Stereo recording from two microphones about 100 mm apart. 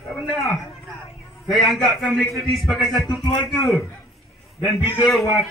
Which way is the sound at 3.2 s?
40° left (ahead or behind).